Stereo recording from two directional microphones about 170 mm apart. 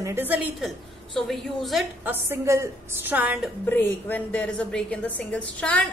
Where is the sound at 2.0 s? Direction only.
10° right (ahead or behind).